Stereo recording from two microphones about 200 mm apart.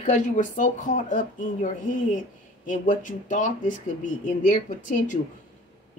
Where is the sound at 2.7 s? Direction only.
40° left (ahead or behind).